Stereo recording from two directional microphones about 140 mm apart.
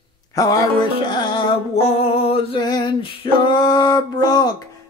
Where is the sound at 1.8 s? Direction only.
50° left (ahead or behind).